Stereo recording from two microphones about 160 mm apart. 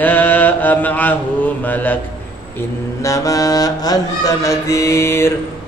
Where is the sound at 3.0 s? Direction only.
20° left (ahead or behind).